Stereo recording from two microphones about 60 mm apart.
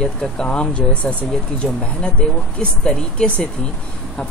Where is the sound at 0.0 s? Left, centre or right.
Centre.